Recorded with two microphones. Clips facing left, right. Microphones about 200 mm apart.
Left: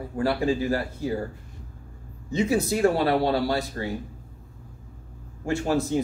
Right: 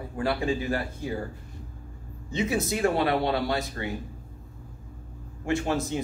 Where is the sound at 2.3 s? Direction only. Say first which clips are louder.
Left 4 dB; 35° left (ahead or behind).